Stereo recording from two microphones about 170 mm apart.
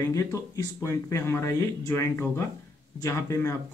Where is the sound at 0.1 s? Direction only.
20° left (ahead or behind).